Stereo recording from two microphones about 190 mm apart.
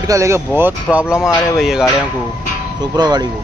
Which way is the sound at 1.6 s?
Centre (ahead or behind).